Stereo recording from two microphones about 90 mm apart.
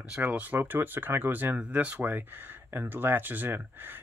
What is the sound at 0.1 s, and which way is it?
Speech, 20° right (ahead or behind).